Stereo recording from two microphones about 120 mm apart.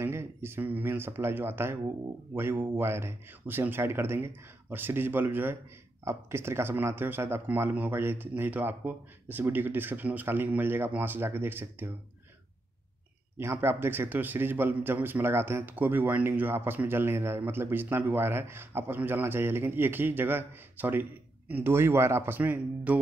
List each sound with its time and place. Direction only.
0.0 s a man's voice: 20° right (ahead or behind)
13.4 s a man's voice: 20° right (ahead or behind)